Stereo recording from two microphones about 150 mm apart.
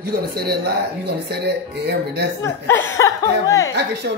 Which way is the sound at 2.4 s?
15° left (ahead or behind).